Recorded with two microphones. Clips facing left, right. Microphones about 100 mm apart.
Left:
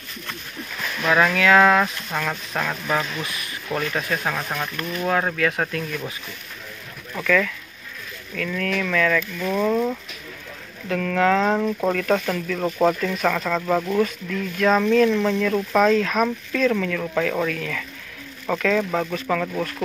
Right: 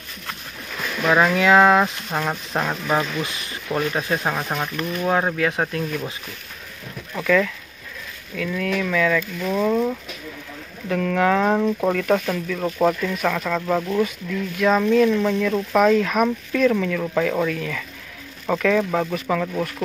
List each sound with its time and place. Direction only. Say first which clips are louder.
1.0 s speech: right 1 dB; 20° right (ahead or behind)
7.2 s speech: right 2 dB; 20° right (ahead or behind); by 9.9 s centre (ahead or behind)
10.9 s speech: even; 15° right (ahead or behind); by 13.9 s 5° left (ahead or behind)
13.9 s speech: even; 10° right (ahead or behind)